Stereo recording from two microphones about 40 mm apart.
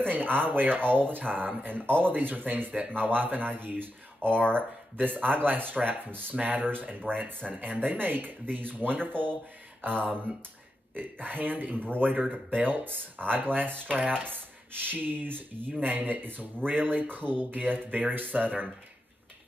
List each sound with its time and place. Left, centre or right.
0.0 s speech: right
11.8 s speech: left
12.4 s speech: right